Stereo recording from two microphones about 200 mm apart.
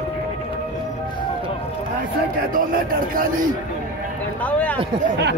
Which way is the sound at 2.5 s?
45° right (ahead or behind).